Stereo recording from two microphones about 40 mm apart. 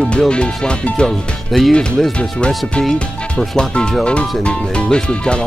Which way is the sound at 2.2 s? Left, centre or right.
Left.